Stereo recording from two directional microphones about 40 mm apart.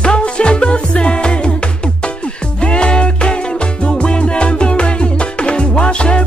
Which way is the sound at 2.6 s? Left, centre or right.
Left.